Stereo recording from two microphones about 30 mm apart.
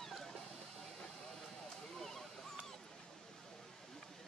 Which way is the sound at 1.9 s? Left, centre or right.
Centre.